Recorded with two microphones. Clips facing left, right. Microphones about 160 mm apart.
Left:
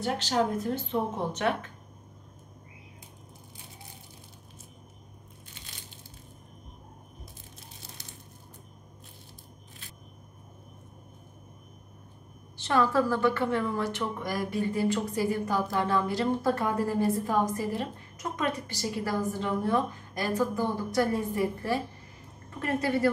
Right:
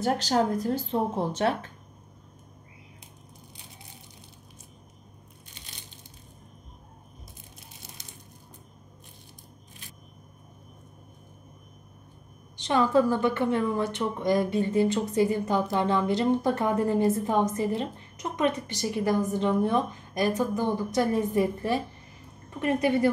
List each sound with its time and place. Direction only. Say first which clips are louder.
0.0 s a woman's voice: right 3 dB; 40° right (ahead or behind)
12.5 s a woman's voice: right 3 dB; 20° right (ahead or behind)